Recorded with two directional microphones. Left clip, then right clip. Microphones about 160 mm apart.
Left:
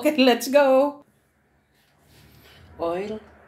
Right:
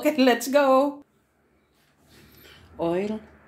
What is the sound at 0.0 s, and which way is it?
Speech, centre (ahead or behind).